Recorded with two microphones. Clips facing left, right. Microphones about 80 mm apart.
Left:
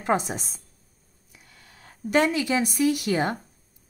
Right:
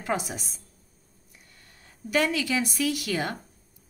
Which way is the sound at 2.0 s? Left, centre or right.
Left.